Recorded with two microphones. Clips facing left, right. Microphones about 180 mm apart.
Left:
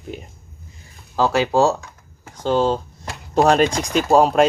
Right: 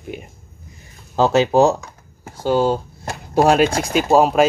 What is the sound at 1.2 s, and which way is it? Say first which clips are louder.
Speech: right 3 dB; 20° right (ahead or behind).